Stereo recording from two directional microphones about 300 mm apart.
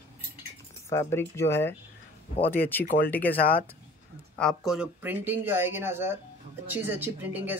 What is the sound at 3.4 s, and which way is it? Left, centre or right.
Speech, left.